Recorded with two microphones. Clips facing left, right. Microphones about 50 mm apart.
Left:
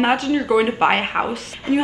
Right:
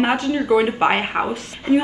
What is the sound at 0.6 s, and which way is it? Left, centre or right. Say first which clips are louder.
Speech: left 1 dB; centre.